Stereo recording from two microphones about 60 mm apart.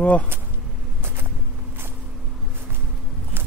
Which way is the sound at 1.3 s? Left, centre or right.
Centre.